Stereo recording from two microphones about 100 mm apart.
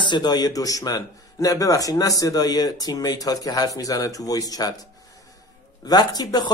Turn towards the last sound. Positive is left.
turn(degrees=45)  # may be behind; listen again after turning